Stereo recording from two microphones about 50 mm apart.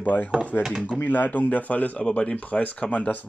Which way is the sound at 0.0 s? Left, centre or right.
Left.